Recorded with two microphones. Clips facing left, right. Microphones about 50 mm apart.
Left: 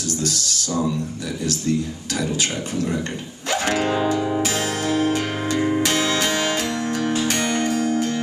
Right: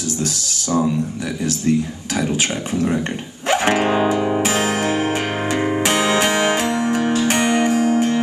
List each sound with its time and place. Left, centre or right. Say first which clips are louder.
0.2 s speech: right 1 dB; right
3.4 s music: right 5 dB; right